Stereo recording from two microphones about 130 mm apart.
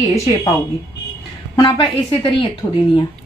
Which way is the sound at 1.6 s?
35° left (ahead or behind).